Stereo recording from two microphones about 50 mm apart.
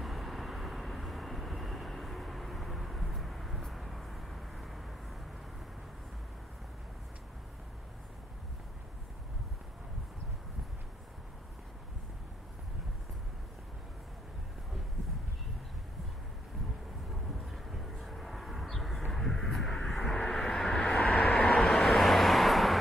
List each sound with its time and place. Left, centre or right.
0.0 s vehicle: centre
17.1 s a sound: centre
20.2 s vehicle: centre
21.6 s vehicle: centre